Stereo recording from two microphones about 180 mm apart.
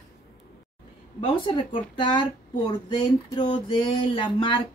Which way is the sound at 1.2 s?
30° left (ahead or behind).